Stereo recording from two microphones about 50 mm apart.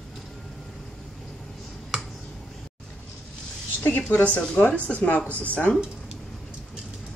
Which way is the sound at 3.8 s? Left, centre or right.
Left.